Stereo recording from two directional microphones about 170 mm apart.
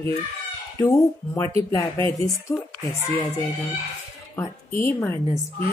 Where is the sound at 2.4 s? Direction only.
20° left (ahead or behind).